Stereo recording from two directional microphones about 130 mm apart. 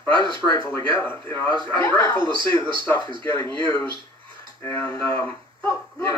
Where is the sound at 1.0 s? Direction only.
15° left (ahead or behind).